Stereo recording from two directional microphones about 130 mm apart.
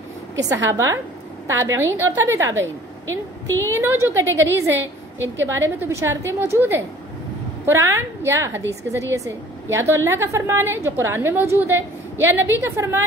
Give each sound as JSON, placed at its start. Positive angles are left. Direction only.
{"t": 0.4, "sound": "a woman's voice", "side_deg": -25}
{"t": 3.6, "sound": "a woman's voice", "side_deg": -20}